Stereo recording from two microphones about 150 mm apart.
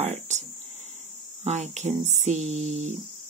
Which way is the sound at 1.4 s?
45° right (ahead or behind).